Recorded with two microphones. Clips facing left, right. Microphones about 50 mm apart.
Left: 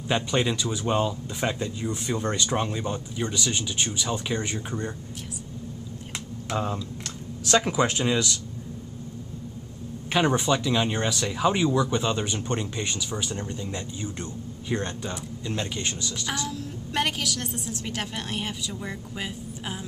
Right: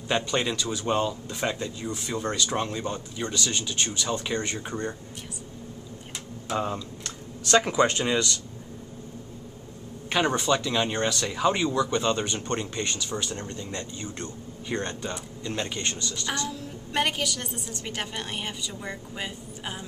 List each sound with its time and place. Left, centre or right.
0.1 s speech: centre
1.9 s speech: left
2.5 s a woman's voice: centre
6.5 s a woman's voice: centre
10.1 s a woman's voice: centre